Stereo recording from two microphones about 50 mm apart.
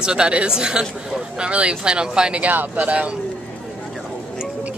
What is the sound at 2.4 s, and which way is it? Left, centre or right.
Speech, right.